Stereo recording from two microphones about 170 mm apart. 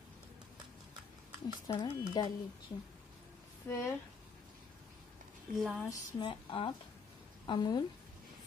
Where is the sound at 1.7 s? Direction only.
25° left (ahead or behind).